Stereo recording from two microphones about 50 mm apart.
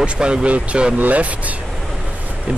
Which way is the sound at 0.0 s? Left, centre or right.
Right.